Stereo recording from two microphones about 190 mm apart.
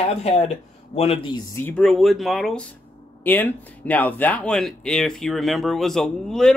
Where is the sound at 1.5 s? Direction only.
10° left (ahead or behind).